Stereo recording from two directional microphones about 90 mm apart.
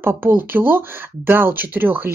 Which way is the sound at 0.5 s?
25° right (ahead or behind).